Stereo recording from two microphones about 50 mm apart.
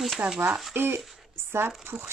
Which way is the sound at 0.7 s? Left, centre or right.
Right.